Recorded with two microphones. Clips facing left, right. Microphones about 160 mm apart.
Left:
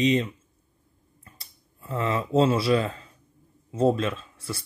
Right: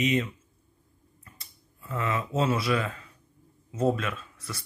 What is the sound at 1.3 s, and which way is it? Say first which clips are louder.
Speech: left 1 dB; 30° left (ahead or behind).